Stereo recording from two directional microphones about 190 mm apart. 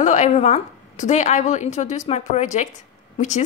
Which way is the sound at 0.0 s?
40° left (ahead or behind).